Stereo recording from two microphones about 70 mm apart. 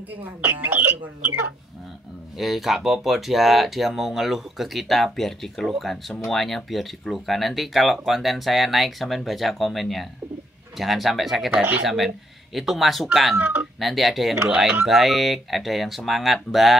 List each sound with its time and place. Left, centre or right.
0.2 s speech: right
2.3 s speech: centre
11.5 s speech: right
11.8 s speech: centre
13.4 s speech: right
13.7 s speech: centre